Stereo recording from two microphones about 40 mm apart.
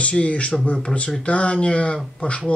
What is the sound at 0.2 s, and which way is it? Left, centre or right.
Speech, left.